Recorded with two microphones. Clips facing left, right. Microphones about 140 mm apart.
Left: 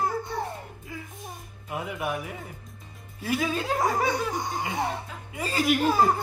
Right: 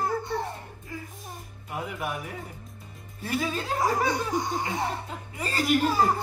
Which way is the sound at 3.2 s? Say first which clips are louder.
Left 2 dB; centre (ahead or behind).